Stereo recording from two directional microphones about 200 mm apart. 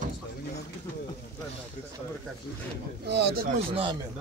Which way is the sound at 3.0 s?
55° right (ahead or behind).